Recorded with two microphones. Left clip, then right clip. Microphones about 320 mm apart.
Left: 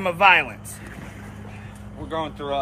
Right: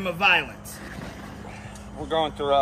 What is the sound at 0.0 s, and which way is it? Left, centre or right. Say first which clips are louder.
Speech: left 5 dB; centre.